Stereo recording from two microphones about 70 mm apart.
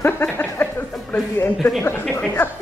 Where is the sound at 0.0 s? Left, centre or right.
Left.